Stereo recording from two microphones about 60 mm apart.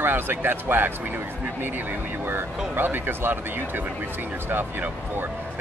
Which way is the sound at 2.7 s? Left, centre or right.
Right.